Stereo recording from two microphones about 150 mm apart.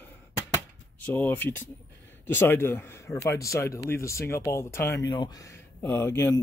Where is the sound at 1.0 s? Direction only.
10° left (ahead or behind).